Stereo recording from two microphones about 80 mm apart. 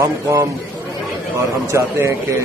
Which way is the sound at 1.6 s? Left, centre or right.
Right.